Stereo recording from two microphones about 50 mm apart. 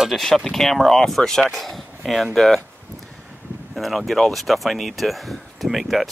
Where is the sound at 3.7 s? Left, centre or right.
Centre.